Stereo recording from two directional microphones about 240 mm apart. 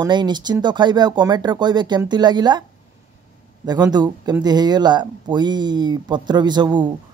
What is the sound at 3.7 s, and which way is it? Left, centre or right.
Speech, centre.